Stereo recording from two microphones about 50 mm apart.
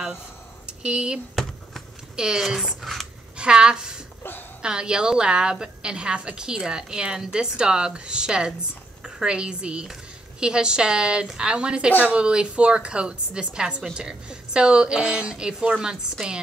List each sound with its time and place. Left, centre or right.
0.7 s a woman's voice: centre
2.6 s speech: centre
3.3 s a woman's voice: centre